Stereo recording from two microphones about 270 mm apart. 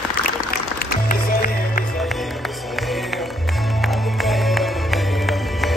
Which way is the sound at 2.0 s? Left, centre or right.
Centre.